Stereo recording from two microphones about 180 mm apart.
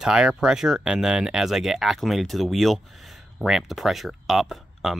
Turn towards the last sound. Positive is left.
turn(degrees=0)  # may be behind; listen again after turning